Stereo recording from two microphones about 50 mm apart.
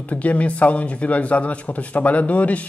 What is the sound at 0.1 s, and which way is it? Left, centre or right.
Speech, left.